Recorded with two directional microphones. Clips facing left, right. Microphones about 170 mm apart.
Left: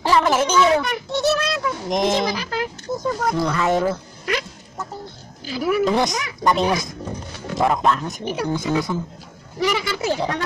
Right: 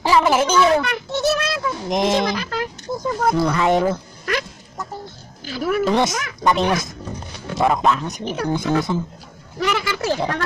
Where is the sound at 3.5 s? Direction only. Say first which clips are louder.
Right 2 dB; 20° right (ahead or behind).